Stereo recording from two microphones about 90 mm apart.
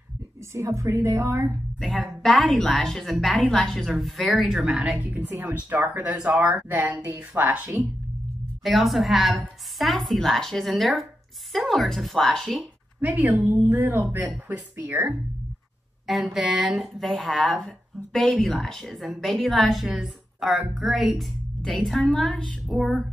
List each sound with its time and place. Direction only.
0.5 s a woman's voice: 35° right (ahead or behind)
1.8 s a woman's voice: centre (ahead or behind)
4.9 s a woman's voice: 20° right (ahead or behind)
8.6 s a woman's voice: centre (ahead or behind)
13.0 s a woman's voice: 20° right (ahead or behind)
16.1 s a woman's voice: centre (ahead or behind)